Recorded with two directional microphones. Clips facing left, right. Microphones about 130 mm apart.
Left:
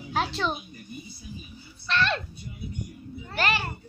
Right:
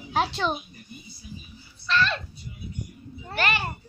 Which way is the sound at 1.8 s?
60° left (ahead or behind).